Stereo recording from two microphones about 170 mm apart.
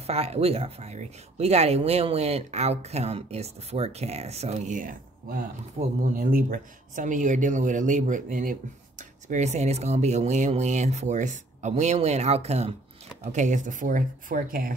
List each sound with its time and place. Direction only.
0.0 s speech: 35° right (ahead or behind); by 14.7 s 55° right (ahead or behind)